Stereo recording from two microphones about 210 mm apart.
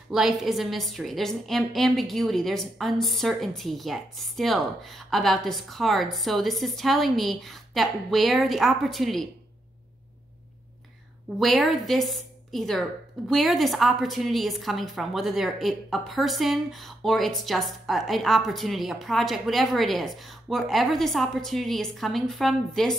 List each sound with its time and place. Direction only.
0.1 s a woman's voice: centre (ahead or behind)
11.3 s a woman's voice: centre (ahead or behind)